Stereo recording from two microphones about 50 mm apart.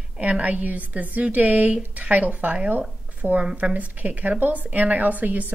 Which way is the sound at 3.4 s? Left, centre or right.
Right.